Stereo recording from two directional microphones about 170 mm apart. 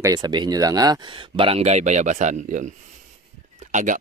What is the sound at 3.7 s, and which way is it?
Speech, 45° right (ahead or behind).